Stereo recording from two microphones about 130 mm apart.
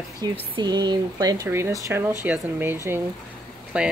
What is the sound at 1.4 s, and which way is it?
Speech, 20° right (ahead or behind).